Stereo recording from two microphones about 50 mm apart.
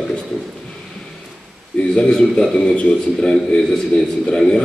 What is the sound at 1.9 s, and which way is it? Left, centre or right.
A man's voice, centre.